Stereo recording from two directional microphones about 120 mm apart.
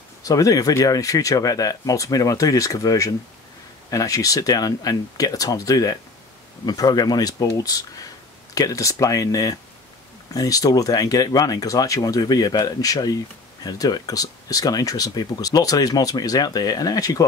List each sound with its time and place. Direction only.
0.2 s speech: 30° left (ahead or behind)